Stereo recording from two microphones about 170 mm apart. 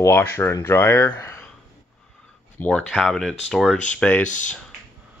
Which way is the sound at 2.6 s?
5° left (ahead or behind).